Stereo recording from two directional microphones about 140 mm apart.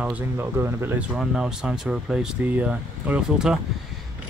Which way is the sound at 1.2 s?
5° right (ahead or behind).